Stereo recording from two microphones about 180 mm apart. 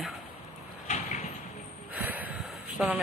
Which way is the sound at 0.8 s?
35° left (ahead or behind).